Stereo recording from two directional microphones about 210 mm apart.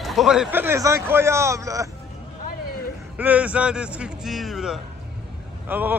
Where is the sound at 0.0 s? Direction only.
Centre (ahead or behind).